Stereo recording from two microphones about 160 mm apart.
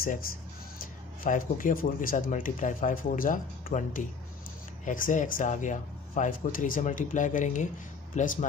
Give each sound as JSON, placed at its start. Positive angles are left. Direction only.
{"t": 0.7, "sound": "speech", "side_deg": 60}